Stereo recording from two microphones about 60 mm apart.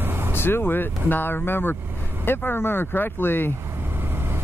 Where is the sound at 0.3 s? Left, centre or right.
Left.